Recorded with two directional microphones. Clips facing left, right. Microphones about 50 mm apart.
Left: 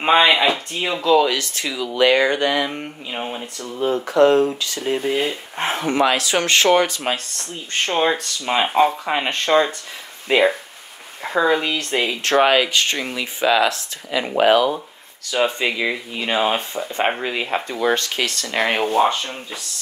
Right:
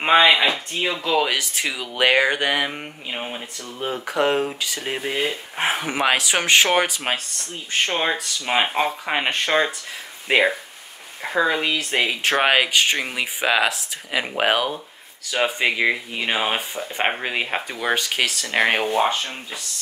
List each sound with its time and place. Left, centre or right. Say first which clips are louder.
0.0 s speech: left 1 dB; centre
1.0 s speech: left 7 dB; centre
5.1 s speech: left 2 dB; centre
7.7 s speech: left 3 dB; centre
10.3 s speech: left 2 dB; right
11.2 s speech: left 2 dB; centre